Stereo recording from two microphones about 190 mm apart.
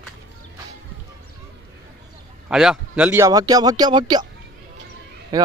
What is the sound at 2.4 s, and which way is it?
Speech, 5° right (ahead or behind).